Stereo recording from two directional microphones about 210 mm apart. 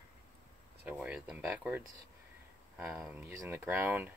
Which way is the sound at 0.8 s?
5° right (ahead or behind).